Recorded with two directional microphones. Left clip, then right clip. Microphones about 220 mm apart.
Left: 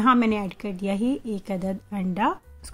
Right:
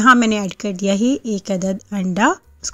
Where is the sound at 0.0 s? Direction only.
20° right (ahead or behind).